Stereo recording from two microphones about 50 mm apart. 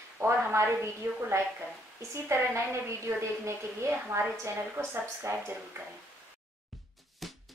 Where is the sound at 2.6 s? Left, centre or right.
Right.